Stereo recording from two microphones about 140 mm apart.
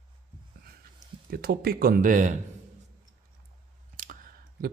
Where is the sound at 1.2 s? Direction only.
90° right; by 2.3 s 65° right (ahead or behind).